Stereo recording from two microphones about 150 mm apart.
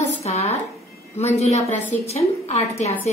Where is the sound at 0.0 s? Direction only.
45° left (ahead or behind).